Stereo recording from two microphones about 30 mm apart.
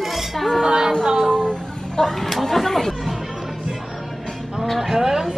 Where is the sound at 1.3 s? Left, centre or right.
Left.